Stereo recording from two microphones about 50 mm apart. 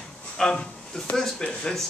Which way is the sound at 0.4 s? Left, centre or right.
Centre.